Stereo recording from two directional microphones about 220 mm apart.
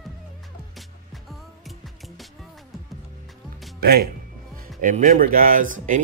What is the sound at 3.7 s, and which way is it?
Speech, 45° right (ahead or behind).